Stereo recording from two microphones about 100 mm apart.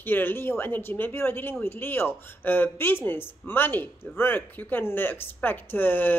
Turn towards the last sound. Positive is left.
turn(degrees=20)  # may be behind; listen again after turning